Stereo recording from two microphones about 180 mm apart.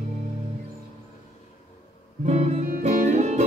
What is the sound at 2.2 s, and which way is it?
Music, 40° right (ahead or behind).